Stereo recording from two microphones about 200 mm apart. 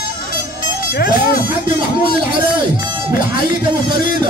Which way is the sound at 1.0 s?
50° left (ahead or behind).